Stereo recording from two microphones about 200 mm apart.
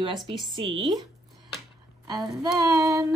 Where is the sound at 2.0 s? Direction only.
20° right (ahead or behind).